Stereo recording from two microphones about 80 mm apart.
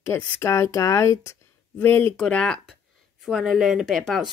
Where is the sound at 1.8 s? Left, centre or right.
Left.